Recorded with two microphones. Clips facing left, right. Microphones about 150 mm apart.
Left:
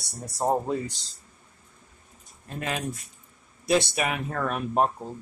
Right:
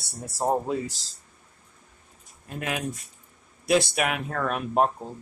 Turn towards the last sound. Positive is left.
turn(degrees=0)  # may be behind; listen again after turning